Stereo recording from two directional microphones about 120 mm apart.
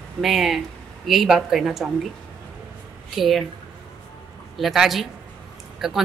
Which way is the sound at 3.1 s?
Centre (ahead or behind).